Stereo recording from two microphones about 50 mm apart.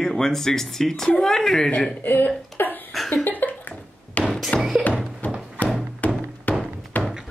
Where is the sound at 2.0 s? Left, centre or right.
Left.